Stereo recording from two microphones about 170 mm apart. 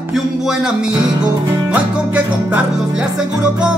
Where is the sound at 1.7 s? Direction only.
10° right (ahead or behind).